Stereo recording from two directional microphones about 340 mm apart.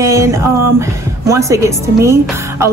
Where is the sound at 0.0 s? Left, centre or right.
Centre.